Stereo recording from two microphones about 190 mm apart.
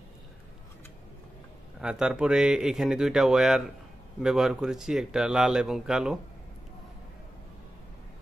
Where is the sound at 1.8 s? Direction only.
5° right (ahead or behind).